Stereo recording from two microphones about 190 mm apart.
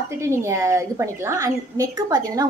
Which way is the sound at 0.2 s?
15° right (ahead or behind).